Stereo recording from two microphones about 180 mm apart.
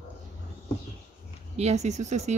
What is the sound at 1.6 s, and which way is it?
Speech, 35° right (ahead or behind).